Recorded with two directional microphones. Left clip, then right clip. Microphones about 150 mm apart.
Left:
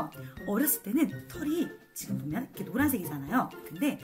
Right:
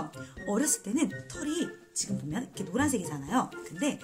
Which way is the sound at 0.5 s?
20° right (ahead or behind).